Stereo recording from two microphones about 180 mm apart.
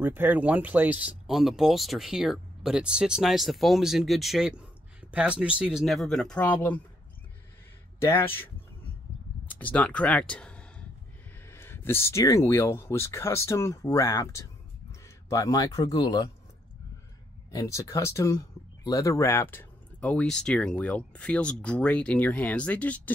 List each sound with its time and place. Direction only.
0.0 s speech: 10° right (ahead or behind); by 6.8 s 10° left (ahead or behind)
8.0 s speech: 15° left (ahead or behind)
9.5 s a sound: 10° left (ahead or behind)
11.4 s speech: 15° left (ahead or behind)
17.5 s speech: 20° left (ahead or behind)